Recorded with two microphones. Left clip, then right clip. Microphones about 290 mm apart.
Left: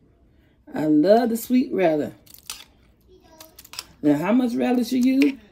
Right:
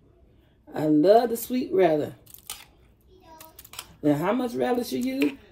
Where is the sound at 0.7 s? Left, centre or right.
Left.